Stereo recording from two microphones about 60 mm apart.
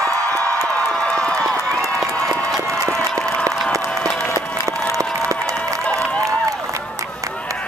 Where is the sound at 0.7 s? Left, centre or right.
Centre.